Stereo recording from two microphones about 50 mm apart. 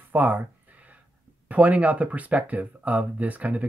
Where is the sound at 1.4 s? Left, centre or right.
Right.